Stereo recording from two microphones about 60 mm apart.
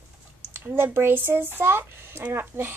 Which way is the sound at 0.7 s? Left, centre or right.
Right.